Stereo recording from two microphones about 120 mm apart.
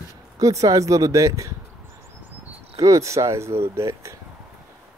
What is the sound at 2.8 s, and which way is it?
Speech, 25° right (ahead or behind).